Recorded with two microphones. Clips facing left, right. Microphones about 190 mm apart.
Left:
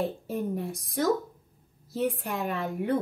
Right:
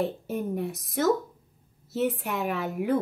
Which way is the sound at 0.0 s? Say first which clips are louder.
Right 1 dB; centre (ahead or behind).